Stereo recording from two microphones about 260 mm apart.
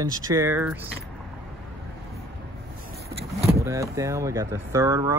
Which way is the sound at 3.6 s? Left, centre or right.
Centre.